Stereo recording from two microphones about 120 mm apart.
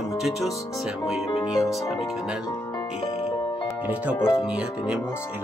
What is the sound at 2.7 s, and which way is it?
Music, 40° left (ahead or behind).